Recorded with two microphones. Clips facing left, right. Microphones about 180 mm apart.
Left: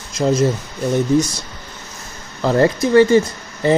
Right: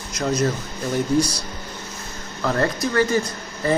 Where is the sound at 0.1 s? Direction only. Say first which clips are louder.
Left 6 dB; 25° left (ahead or behind).